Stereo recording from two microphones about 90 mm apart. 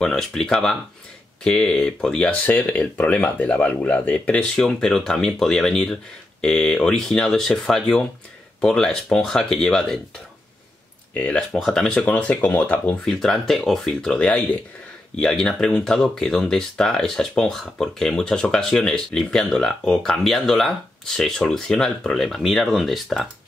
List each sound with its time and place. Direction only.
0.0 s speech: 5° left (ahead or behind)
11.1 s speech: 15° left (ahead or behind)
13.0 s speech: 5° left (ahead or behind)